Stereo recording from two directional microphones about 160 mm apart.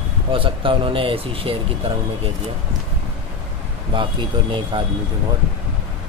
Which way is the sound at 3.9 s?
30° right (ahead or behind).